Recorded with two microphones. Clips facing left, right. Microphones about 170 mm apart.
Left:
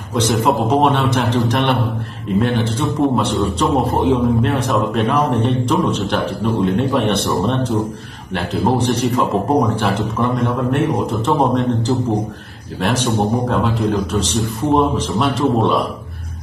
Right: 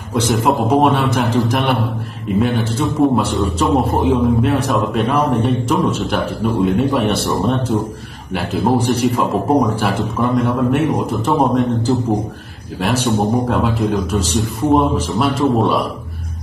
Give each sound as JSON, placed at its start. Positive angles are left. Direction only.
{"t": 0.1, "sound": "a man's voice", "side_deg": 0}